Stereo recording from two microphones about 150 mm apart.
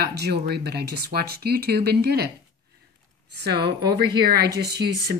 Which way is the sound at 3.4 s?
90° right.